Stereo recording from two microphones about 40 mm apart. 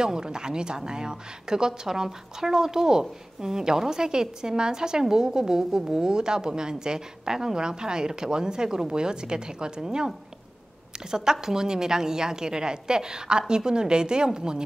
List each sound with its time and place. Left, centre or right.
0.0 s a woman's voice: centre